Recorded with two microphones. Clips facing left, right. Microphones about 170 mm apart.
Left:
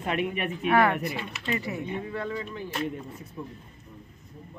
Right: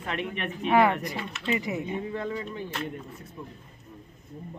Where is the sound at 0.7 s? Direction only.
15° right (ahead or behind).